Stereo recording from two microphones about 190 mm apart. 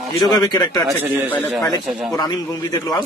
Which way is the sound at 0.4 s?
20° left (ahead or behind).